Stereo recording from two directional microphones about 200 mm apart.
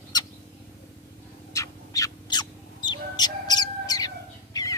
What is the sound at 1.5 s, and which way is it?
Owl, 15° left (ahead or behind).